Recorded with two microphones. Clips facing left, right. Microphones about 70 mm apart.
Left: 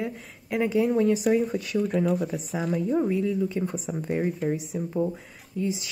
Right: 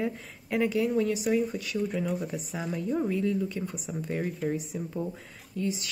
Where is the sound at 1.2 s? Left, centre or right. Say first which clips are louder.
Left 4 dB; left.